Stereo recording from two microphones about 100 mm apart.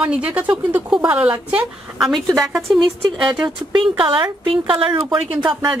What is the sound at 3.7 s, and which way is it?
Speech, 55° right (ahead or behind).